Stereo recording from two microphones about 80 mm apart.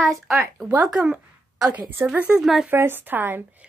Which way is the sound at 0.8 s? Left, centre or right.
Centre.